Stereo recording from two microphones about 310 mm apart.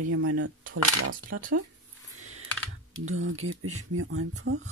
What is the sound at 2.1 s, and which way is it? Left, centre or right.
Computer keyboard, right.